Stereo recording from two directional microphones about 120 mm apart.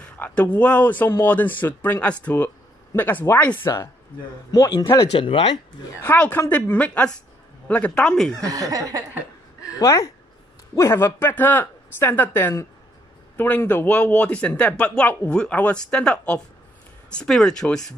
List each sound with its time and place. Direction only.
0.0 s speech: 10° left (ahead or behind)
3.6 s speech: 30° left (ahead or behind)
4.9 s speech: 45° left (ahead or behind)
6.0 s speech: 15° left (ahead or behind)
8.5 s speech: 30° right (ahead or behind)
9.6 s a sound: 30° left (ahead or behind)
10.7 s speech: 25° left (ahead or behind); by 17.7 s 5° left (ahead or behind)